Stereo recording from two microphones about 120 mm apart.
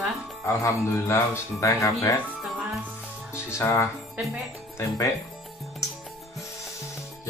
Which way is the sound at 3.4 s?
25° left (ahead or behind).